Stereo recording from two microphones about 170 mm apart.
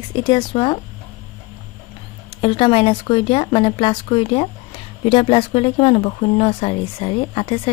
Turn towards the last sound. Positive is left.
turn(degrees=30)  # may be behind; listen again after turning